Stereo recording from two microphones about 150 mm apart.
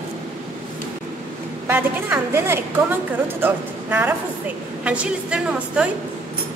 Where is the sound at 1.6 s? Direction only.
15° right (ahead or behind).